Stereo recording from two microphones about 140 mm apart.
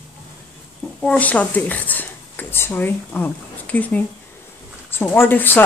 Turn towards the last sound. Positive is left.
turn(degrees=15)  # may be behind; listen again after turning